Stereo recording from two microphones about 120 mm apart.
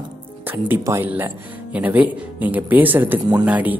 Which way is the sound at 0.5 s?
20° right (ahead or behind).